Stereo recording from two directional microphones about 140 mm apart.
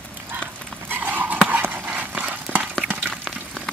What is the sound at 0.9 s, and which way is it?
Dog, 15° right (ahead or behind).